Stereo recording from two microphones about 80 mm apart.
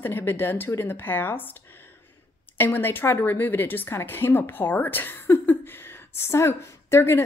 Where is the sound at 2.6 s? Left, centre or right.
Left.